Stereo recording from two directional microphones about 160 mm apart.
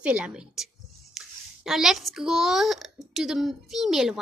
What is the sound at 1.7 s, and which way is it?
A child's voice, centre (ahead or behind).